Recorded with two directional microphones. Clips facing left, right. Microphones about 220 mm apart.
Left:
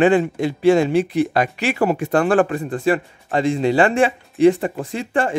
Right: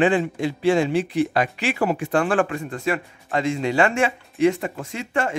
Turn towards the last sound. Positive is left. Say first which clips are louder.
# left 4 dB
turn(degrees=30)  # may be behind; listen again after turning